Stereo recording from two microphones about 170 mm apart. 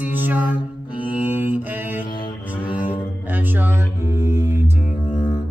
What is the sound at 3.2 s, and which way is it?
Music, 10° right (ahead or behind).